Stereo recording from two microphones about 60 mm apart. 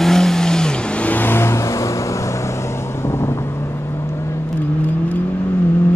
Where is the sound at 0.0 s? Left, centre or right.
Centre; by 1.9 s left.